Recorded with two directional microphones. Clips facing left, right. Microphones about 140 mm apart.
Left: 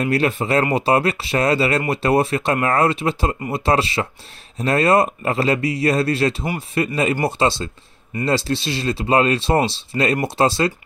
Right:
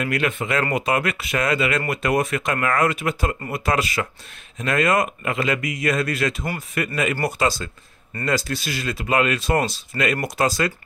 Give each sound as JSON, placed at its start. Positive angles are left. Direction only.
{"t": 0.0, "sound": "speech", "side_deg": 35}